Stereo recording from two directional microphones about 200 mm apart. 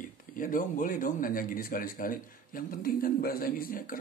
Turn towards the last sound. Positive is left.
turn(degrees=45)  # may be behind; listen again after turning